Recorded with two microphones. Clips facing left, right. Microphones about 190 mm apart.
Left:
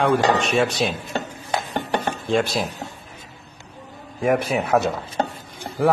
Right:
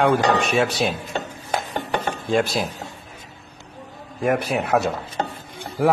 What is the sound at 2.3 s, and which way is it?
Speech, centre (ahead or behind).